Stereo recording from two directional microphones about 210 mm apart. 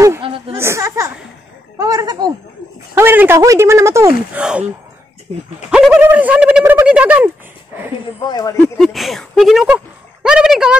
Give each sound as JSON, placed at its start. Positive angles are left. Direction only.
{"t": 0.2, "sound": "a sound", "side_deg": -25}
{"t": 0.6, "sound": "speech", "side_deg": -15}
{"t": 5.3, "sound": "speech", "side_deg": -30}
{"t": 5.7, "sound": "speech", "side_deg": -5}
{"t": 8.3, "sound": "speech", "side_deg": 15}
{"t": 8.7, "sound": "speech", "side_deg": 0}